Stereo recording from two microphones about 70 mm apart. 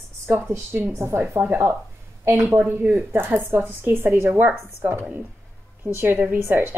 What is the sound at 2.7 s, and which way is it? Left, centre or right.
A woman's voice, right.